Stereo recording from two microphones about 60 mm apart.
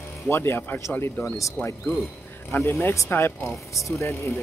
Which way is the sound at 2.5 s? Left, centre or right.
Left.